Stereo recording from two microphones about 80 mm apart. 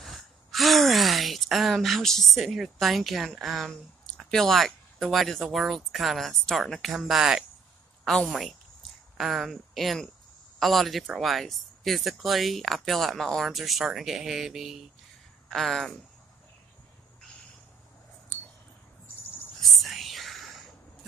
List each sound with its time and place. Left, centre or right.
0.0 s speech: centre
19.6 s whispering: centre